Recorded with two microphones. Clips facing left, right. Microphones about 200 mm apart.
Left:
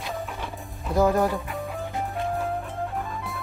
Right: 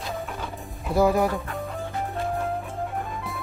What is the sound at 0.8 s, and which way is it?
Speech, 10° right (ahead or behind).